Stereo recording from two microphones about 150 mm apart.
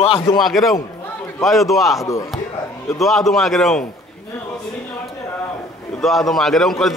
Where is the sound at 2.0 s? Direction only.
20° left (ahead or behind).